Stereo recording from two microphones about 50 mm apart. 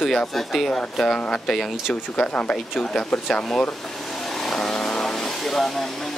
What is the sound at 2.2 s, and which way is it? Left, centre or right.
Speech, left.